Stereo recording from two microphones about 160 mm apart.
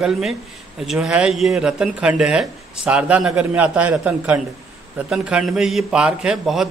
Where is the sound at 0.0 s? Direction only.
5° right (ahead or behind).